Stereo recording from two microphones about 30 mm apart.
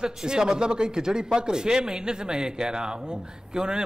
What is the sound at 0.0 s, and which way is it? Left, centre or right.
Speech, right.